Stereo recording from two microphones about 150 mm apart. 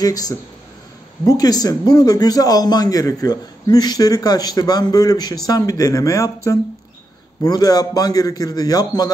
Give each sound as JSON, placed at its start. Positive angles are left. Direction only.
{"t": 0.0, "sound": "a man's voice", "side_deg": 25}